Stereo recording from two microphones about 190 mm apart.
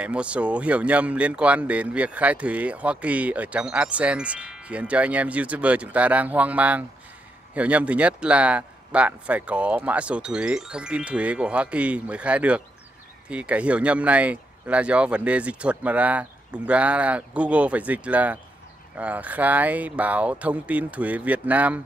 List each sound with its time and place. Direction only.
0.0 s speech: 5° right (ahead or behind)